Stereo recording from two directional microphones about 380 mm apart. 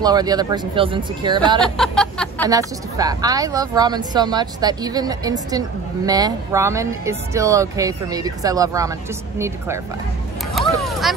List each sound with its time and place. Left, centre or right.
0.0 s speech: centre
1.6 s music: centre
2.5 s speech: centre
10.8 s speech: centre